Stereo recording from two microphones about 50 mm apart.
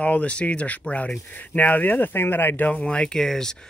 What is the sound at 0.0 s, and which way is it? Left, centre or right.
Speech, left.